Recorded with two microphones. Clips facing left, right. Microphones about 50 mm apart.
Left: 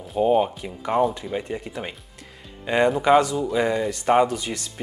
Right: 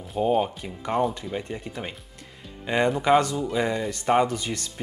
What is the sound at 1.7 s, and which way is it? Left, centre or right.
Speech, left.